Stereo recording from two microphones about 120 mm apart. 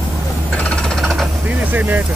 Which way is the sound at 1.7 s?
15° right (ahead or behind).